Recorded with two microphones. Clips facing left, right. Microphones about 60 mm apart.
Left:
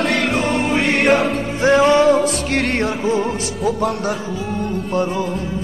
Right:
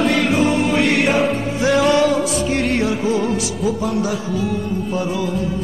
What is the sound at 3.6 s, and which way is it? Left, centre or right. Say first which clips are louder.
Speech: left 1 dB; left.